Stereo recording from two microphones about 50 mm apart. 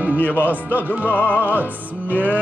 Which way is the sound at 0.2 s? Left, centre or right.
Left.